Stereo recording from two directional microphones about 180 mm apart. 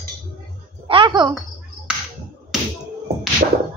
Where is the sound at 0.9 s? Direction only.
25° right (ahead or behind).